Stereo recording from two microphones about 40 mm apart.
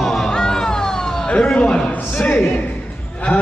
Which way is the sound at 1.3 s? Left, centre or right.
Left.